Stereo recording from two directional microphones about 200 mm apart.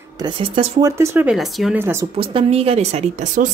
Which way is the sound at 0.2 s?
25° right (ahead or behind).